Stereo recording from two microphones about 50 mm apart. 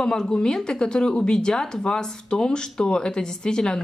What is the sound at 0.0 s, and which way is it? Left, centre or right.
A woman's voice, centre.